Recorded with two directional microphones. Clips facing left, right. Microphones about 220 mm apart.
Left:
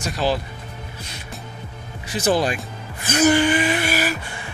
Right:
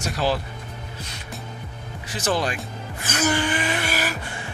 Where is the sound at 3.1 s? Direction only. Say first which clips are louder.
Left 7 dB; 15° left (ahead or behind).